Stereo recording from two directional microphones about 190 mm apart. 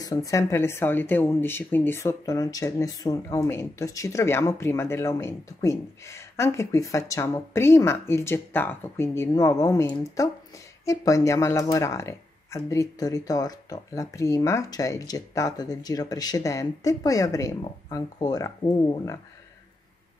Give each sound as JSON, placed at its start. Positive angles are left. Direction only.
{"t": 0.0, "sound": "speech", "side_deg": 15}